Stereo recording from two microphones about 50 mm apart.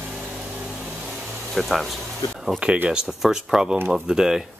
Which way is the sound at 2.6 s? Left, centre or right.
Right.